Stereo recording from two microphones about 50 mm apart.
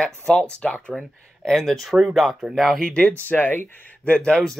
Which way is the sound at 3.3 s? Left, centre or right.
Left.